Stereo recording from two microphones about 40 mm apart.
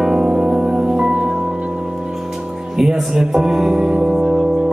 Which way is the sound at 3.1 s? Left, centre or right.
Centre.